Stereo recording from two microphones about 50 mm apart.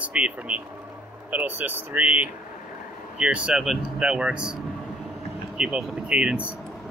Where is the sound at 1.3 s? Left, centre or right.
Right.